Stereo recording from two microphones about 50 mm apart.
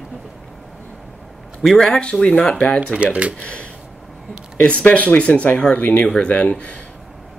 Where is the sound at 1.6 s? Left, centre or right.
Centre.